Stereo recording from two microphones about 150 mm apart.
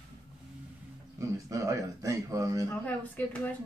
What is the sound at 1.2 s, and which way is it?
A man's voice, 20° right (ahead or behind).